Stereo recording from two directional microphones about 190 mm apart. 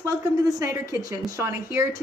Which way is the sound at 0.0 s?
15° right (ahead or behind).